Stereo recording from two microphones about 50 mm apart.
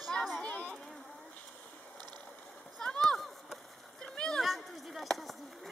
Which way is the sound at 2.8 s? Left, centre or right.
Centre.